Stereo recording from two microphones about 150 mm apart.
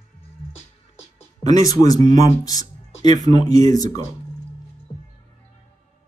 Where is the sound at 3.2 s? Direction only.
50° right (ahead or behind).